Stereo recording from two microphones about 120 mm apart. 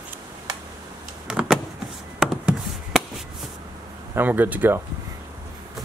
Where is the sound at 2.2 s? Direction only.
5° right (ahead or behind).